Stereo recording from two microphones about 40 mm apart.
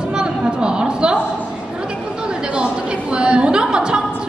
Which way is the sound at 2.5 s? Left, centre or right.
Right.